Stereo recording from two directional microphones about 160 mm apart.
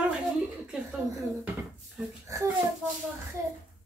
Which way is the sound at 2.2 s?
20° right (ahead or behind).